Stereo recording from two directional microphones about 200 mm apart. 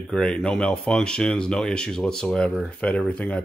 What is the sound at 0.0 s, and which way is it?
Speech, 5° left (ahead or behind).